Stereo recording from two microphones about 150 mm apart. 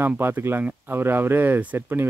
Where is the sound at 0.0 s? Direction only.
15° right (ahead or behind).